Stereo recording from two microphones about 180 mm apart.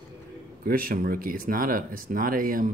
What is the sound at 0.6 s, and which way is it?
Speech, 55° right (ahead or behind).